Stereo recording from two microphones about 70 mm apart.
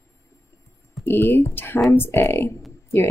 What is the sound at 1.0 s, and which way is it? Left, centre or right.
Speech, left.